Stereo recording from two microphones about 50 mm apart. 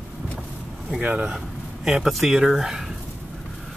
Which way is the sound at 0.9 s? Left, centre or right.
Right.